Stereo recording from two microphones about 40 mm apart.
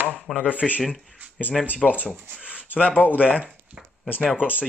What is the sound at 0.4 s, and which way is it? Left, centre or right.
Speech, left.